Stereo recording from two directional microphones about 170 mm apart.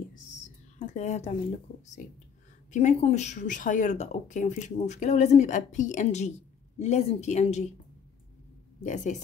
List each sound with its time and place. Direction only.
0.7 s a woman's voice: 45° left (ahead or behind)
2.7 s speech: 45° left (ahead or behind)
8.8 s speech: 45° left (ahead or behind)